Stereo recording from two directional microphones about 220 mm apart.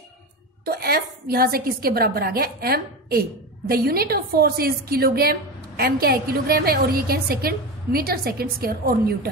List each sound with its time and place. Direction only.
0.7 s a woman's voice: 45° right (ahead or behind)